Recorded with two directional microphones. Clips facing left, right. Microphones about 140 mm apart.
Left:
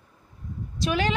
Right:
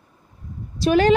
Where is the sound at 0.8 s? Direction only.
40° right (ahead or behind).